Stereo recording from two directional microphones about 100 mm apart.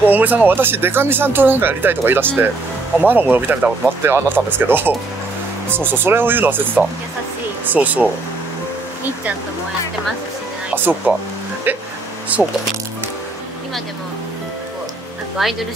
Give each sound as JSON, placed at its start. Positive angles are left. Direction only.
{"t": 0.0, "sound": "speech", "side_deg": -15}
{"t": 10.7, "sound": "speech", "side_deg": -20}
{"t": 15.4, "sound": "speech", "side_deg": 0}